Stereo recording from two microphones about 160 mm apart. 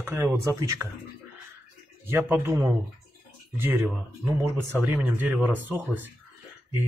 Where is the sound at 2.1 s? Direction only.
15° right (ahead or behind).